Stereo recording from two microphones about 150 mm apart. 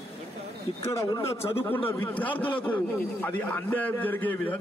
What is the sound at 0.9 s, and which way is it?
A man's voice, 25° left (ahead or behind).